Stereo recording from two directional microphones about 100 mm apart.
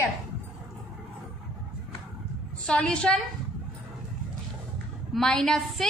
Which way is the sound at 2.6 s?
10° left (ahead or behind).